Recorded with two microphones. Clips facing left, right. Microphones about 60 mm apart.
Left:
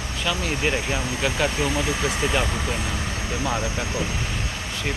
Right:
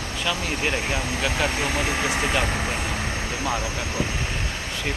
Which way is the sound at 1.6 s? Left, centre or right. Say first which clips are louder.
Even; right.